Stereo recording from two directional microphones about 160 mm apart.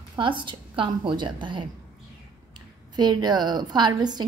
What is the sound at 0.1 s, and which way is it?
A woman's voice, 30° right (ahead or behind).